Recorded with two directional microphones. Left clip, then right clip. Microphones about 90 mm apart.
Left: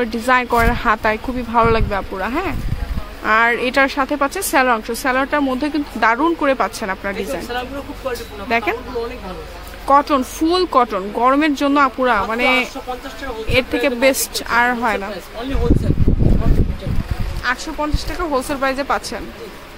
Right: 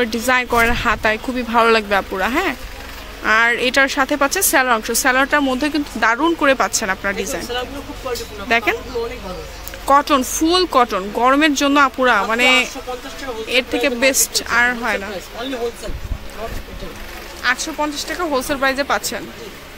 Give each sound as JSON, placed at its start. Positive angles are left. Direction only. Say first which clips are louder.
{"t": 0.0, "sound": "speech", "louder": "left 1 dB", "side_deg": 5}
{"t": 1.5, "sound": "speech", "louder": "right 2 dB", "side_deg": -15}
{"t": 3.3, "sound": "speech", "louder": "even", "side_deg": 5}
{"t": 9.8, "sound": "speech", "louder": "even", "side_deg": 0}
{"t": 13.7, "sound": "speech", "louder": "left 2 dB", "side_deg": 20}
{"t": 17.4, "sound": "speech", "louder": "right 2 dB", "side_deg": -5}